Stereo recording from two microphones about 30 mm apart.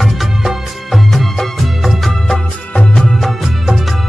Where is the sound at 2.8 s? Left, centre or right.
Left.